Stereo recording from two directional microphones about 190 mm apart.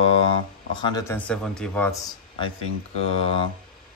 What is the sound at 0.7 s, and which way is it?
Speech, 20° left (ahead or behind).